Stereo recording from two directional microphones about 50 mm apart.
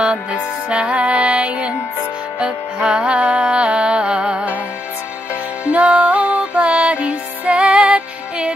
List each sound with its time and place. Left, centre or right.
0.0 s music: centre